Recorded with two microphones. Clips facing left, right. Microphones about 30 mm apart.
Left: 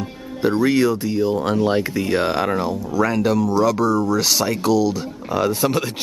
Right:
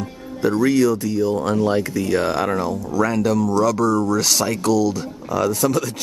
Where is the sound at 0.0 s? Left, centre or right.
Left.